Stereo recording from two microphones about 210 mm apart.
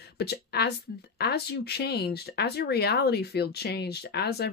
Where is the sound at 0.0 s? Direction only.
50° left (ahead or behind).